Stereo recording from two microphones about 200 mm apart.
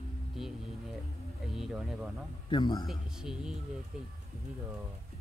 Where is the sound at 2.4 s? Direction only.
20° left (ahead or behind).